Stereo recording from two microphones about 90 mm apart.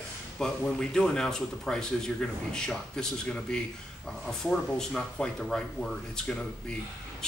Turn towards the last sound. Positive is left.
turn(degrees=5)  # may be behind; listen again after turning